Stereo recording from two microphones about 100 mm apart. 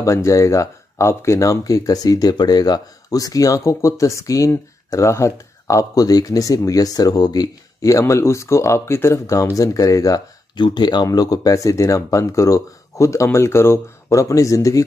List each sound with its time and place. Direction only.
0.0 s speech: 30° left (ahead or behind); by 11.1 s 45° left (ahead or behind)
11.1 s speech: 35° left (ahead or behind)